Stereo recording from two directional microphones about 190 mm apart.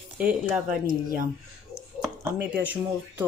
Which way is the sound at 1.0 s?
45° right (ahead or behind).